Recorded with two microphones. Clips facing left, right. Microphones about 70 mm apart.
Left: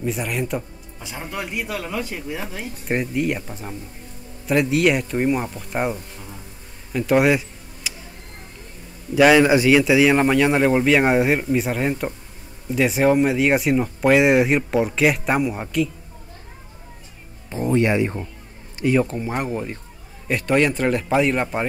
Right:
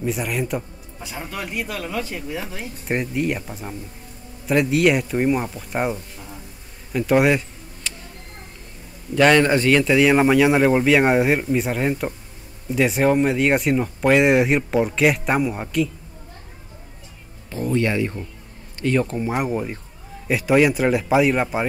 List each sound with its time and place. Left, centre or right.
0.0 s speech: centre
6.9 s a sound: centre
9.1 s speech: centre
17.5 s speech: left
18.8 s speech: centre